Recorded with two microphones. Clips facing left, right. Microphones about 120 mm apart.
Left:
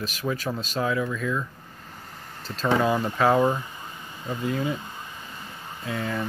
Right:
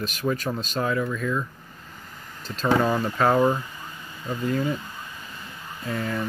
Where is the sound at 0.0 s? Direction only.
Centre (ahead or behind).